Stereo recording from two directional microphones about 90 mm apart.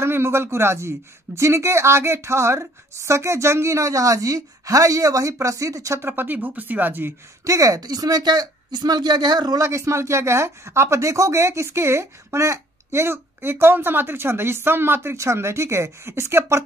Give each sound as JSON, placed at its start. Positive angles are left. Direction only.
{"t": 0.0, "sound": "speech", "side_deg": -30}
{"t": 7.4, "sound": "speech", "side_deg": -40}
{"t": 9.6, "sound": "speech", "side_deg": -30}